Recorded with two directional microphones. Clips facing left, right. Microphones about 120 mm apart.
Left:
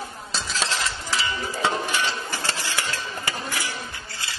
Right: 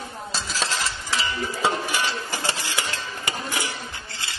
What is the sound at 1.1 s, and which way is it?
Music, centre (ahead or behind).